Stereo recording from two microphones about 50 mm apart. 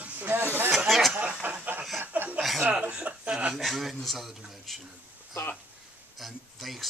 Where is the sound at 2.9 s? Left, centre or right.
Right.